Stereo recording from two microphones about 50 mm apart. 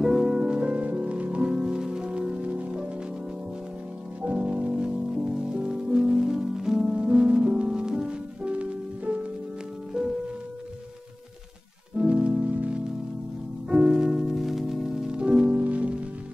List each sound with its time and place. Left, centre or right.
0.0 s music: centre; by 2.9 s right
4.2 s music: right
12.0 s music: right
13.7 s music: centre